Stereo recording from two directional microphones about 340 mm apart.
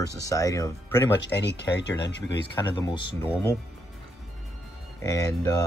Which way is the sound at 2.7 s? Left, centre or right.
Centre.